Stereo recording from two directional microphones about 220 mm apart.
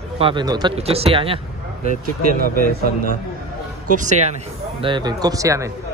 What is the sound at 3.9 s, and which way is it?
Speech, 35° right (ahead or behind).